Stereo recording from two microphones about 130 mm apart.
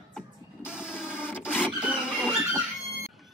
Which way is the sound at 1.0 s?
15° left (ahead or behind).